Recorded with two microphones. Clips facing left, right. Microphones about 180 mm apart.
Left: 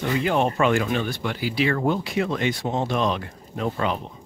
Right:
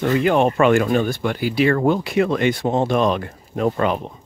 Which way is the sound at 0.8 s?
45° right (ahead or behind).